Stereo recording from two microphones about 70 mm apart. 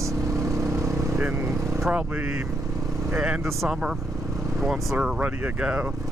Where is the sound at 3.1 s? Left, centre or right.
Centre.